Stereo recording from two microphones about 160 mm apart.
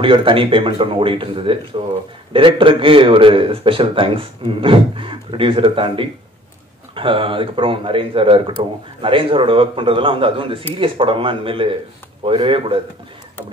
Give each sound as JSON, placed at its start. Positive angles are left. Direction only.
{"t": 0.0, "sound": "a man's voice", "side_deg": -35}